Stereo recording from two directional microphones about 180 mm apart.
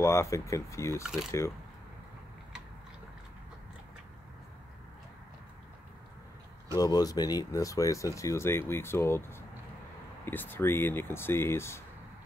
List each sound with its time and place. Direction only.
0.0 s speech: 15° left (ahead or behind)
1.0 s speech: 5° right (ahead or behind)
6.7 s speech: 20° left (ahead or behind)